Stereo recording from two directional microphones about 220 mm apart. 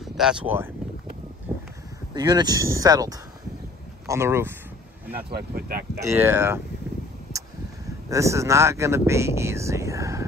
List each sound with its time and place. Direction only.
0.0 s speech: 5° right (ahead or behind)
1.5 s a sound: 10° right (ahead or behind)
2.1 s speech: 20° right (ahead or behind)
5.1 s speech: 45° right (ahead or behind)
5.9 s speech: 10° right (ahead or behind)
8.1 s speech: 15° right (ahead or behind)